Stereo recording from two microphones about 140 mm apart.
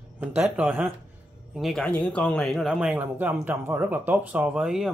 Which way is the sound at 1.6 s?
Centre (ahead or behind).